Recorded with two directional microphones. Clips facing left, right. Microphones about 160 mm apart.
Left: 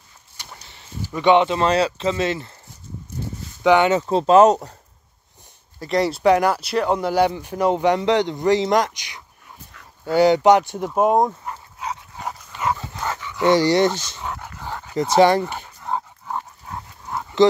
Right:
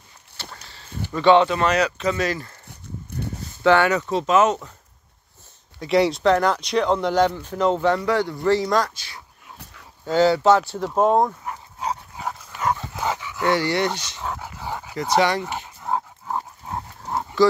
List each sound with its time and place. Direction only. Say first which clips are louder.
1.1 s speech: even; 20° left (ahead or behind)
3.6 s speech: left 2 dB; 20° left (ahead or behind)
4.0 s speech: left 5 dB; 35° left (ahead or behind)
5.8 s speech: right 2 dB; centre (ahead or behind); by 11.3 s 15° left (ahead or behind)
12.6 s dog: even; centre (ahead or behind)
13.0 s dog: right 2 dB; 10° right (ahead or behind)
13.6 s speech: left 6 dB; 35° left (ahead or behind)
13.8 s dog: left 4 dB; centre (ahead or behind)
15.1 s speech: left 5 dB; 35° left (ahead or behind)
15.4 s dog: even; 5° right (ahead or behind)
16.6 s dog: right 3 dB; 30° right (ahead or behind)